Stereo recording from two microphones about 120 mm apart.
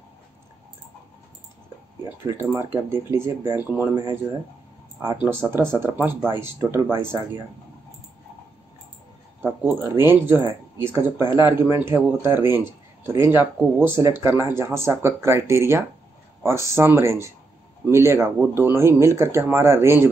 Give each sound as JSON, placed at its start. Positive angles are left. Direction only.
{"t": 2.7, "sound": "a man's voice", "side_deg": -20}
{"t": 3.9, "sound": "a man's voice", "side_deg": -30}
{"t": 5.0, "sound": "a man's voice", "side_deg": -20}
{"t": 9.9, "sound": "a man's voice", "side_deg": -20}